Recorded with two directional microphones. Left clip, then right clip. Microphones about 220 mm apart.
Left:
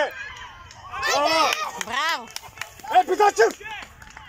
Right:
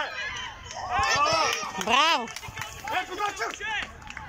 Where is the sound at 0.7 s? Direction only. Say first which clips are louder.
Right 7 dB; 45° right (ahead or behind).